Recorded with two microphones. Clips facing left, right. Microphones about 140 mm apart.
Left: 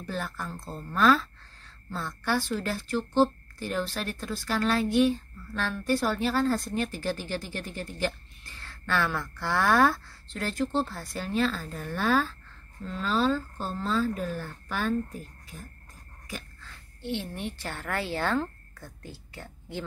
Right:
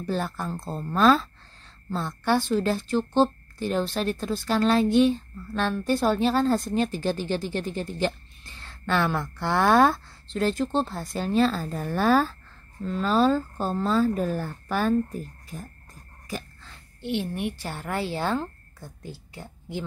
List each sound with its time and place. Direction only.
0.0 s a woman's voice: 30° right (ahead or behind)
16.3 s a sound: 35° right (ahead or behind)
17.0 s a woman's voice: 15° right (ahead or behind)